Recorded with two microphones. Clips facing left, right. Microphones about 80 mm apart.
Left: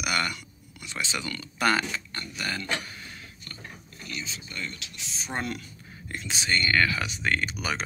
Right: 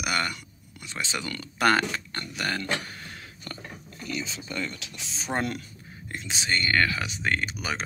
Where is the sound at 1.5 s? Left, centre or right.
Right.